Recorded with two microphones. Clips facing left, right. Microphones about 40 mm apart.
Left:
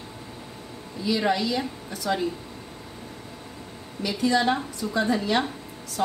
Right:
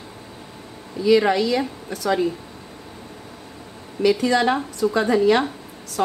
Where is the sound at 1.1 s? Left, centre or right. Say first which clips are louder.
Right 7 dB; right.